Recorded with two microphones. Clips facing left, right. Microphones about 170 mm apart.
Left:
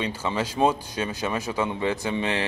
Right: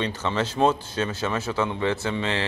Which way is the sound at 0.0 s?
10° left (ahead or behind).